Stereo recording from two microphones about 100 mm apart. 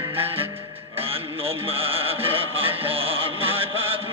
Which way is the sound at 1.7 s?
70° right (ahead or behind).